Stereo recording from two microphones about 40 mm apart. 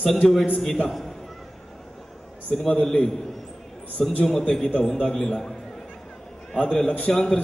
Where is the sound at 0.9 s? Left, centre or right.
Centre.